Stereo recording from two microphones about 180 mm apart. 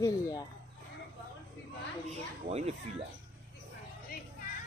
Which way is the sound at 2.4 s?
35° right (ahead or behind).